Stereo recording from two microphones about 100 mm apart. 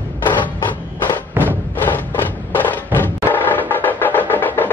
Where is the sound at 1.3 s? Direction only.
20° right (ahead or behind).